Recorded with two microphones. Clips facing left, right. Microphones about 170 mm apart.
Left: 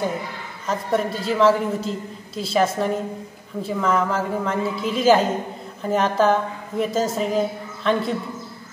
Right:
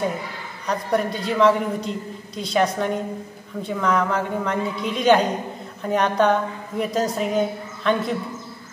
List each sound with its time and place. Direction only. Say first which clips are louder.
0.7 s a woman's voice: even; centre (ahead or behind)